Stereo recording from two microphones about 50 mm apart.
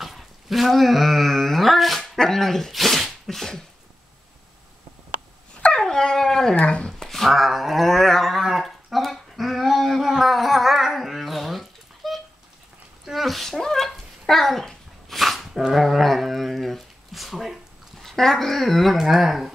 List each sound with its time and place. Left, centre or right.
0.0 s speech: centre
5.8 s dog: centre
6.5 s speech: left
6.9 s a sound: centre
8.4 s a sound: centre
15.7 s dog: centre
17.9 s speech: centre